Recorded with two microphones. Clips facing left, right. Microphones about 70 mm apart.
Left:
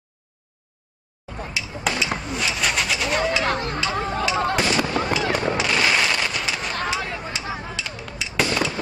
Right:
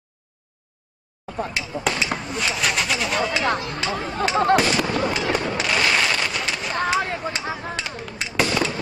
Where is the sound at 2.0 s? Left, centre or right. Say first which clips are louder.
Even; centre.